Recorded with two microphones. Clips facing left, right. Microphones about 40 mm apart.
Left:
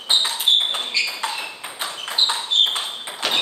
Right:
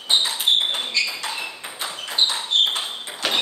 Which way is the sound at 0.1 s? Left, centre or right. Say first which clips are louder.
Left 1 dB; centre.